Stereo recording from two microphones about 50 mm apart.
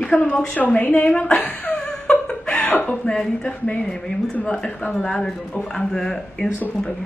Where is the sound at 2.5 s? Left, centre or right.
Left.